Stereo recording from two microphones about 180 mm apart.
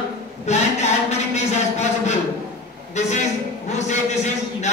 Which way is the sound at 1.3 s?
40° left (ahead or behind).